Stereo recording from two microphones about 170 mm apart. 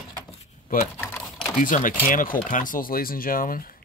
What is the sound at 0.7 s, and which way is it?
Speech, 60° left (ahead or behind).